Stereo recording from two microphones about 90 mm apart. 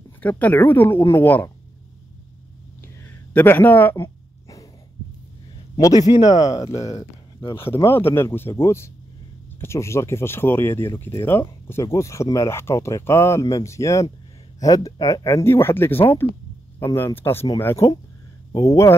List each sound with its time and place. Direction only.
0.2 s speech: 20° left (ahead or behind)
3.0 s a sound: 25° left (ahead or behind)
5.8 s a man's voice: 40° left (ahead or behind)
7.3 s speech: 25° left (ahead or behind)